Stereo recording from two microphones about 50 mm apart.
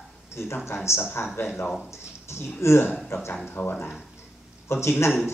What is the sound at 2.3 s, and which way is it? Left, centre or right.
Speech, left.